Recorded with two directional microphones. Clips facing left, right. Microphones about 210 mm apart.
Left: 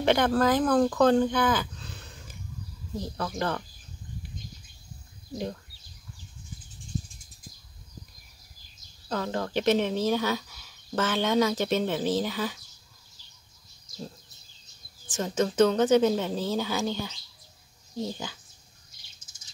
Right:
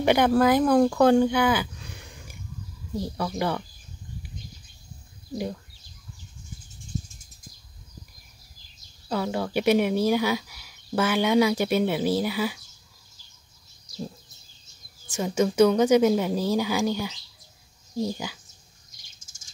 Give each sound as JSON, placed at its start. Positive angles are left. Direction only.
{"t": 0.0, "sound": "speech", "side_deg": -10}
{"t": 9.1, "sound": "speech", "side_deg": -10}
{"t": 15.0, "sound": "speech", "side_deg": -10}
{"t": 19.2, "sound": "bird", "side_deg": -45}